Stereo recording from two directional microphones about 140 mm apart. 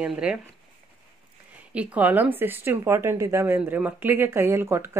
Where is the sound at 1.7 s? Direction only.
10° right (ahead or behind).